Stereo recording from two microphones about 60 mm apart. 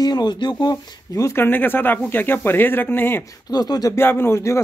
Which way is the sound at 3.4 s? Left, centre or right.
Left.